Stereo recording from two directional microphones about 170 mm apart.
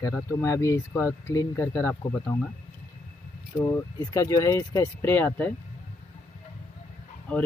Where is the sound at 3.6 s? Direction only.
20° left (ahead or behind).